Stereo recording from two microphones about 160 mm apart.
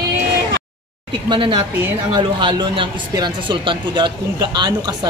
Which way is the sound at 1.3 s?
35° right (ahead or behind).